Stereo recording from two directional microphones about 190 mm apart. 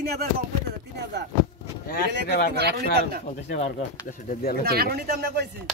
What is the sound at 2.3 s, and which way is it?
Speech, 55° left (ahead or behind).